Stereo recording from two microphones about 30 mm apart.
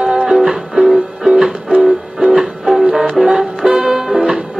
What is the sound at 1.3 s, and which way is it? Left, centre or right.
Music, right.